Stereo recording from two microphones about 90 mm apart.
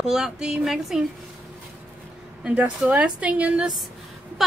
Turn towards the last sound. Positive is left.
turn(degrees=-15)  # may be behind; listen again after turning